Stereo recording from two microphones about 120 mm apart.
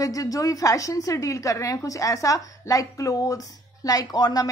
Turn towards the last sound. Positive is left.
turn(degrees=35)  # may be behind; listen again after turning